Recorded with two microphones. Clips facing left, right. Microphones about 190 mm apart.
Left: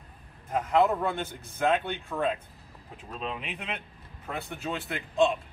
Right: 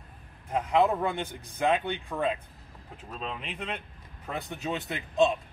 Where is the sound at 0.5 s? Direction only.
15° right (ahead or behind).